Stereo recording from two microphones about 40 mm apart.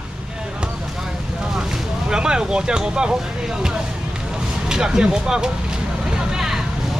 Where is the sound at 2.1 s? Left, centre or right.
Right.